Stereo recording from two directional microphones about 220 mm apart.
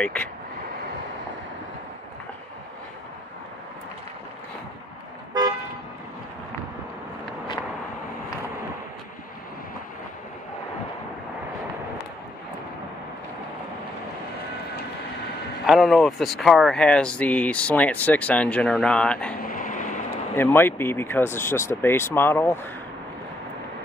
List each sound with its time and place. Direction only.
0.0 s speech: 5° left (ahead or behind)
15.6 s speech: centre (ahead or behind)
19.4 s a sound: 40° left (ahead or behind)
20.3 s speech: 10° left (ahead or behind)